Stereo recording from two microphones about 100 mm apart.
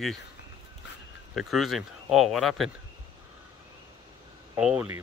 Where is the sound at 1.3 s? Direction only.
Centre (ahead or behind).